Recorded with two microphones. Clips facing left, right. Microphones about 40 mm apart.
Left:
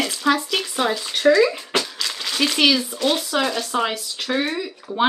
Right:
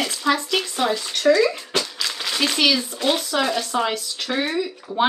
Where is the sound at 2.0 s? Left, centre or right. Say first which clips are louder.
Left 1 dB; centre.